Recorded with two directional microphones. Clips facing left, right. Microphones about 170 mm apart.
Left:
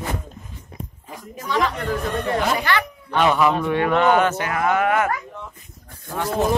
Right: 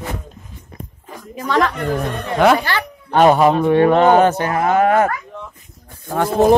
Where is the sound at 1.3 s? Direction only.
85° right.